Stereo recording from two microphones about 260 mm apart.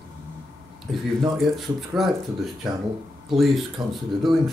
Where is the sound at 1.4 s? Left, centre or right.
Centre.